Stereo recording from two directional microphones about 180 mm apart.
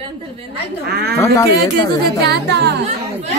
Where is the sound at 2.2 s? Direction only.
65° right (ahead or behind).